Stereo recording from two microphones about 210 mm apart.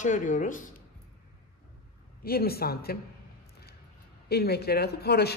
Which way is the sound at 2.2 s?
45° left (ahead or behind).